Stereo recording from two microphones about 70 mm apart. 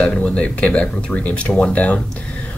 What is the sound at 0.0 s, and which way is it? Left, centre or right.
Speech, centre.